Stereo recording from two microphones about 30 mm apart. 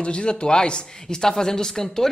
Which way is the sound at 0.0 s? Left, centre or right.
Left.